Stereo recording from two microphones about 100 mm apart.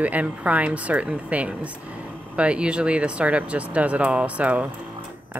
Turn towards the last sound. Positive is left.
turn(degrees=-15)  # may be behind; listen again after turning